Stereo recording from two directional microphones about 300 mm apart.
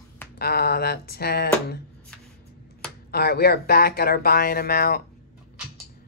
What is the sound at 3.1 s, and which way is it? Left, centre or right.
Speech, left.